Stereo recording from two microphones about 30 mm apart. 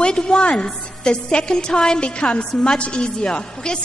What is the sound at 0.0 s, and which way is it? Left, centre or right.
A woman's voice, left.